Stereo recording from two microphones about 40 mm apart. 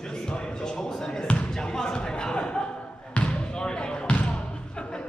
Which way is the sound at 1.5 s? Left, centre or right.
Centre.